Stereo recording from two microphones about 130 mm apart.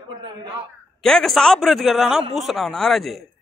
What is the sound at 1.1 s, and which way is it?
A man's voice, 5° left (ahead or behind).